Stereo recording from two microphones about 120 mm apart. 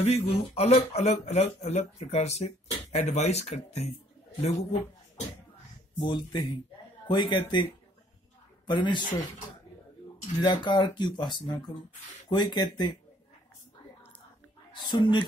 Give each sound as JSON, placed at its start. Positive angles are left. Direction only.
{"t": 0.0, "sound": "speech", "side_deg": 60}
{"t": 5.9, "sound": "speech", "side_deg": 40}
{"t": 8.6, "sound": "speech", "side_deg": 40}
{"t": 10.4, "sound": "speech", "side_deg": 40}
{"t": 14.7, "sound": "a woman's voice", "side_deg": 40}